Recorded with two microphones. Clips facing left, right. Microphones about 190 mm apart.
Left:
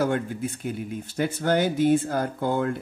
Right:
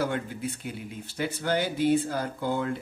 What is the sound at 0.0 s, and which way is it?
Speech, 50° left (ahead or behind).